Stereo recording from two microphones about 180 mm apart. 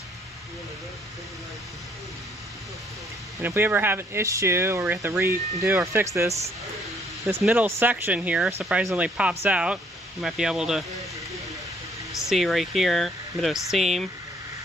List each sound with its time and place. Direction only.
3.4 s speech: 10° right (ahead or behind)
12.3 s speech: centre (ahead or behind)